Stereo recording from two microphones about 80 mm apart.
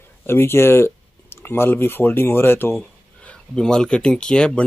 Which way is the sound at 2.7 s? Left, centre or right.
Centre.